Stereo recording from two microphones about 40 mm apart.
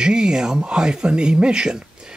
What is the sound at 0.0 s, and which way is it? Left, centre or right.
Speech, centre.